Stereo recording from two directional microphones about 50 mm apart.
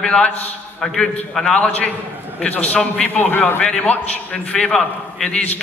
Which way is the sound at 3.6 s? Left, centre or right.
Left.